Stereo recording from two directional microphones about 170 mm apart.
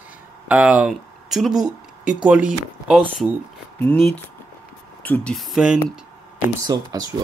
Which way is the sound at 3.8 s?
10° left (ahead or behind).